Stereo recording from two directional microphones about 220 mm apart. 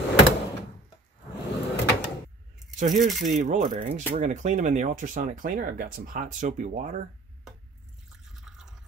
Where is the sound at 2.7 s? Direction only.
35° right (ahead or behind).